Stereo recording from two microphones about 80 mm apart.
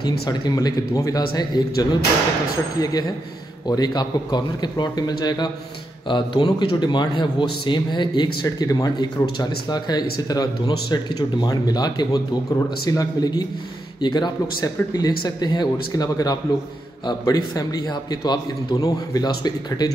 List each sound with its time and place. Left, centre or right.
0.0 s a man's voice: left
6.0 s a man's voice: left